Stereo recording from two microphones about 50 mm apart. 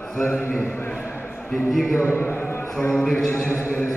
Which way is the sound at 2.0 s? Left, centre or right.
Left.